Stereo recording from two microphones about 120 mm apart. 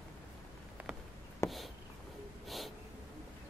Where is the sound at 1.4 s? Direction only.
20° left (ahead or behind).